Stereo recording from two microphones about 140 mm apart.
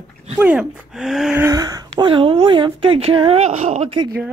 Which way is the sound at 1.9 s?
40° right (ahead or behind).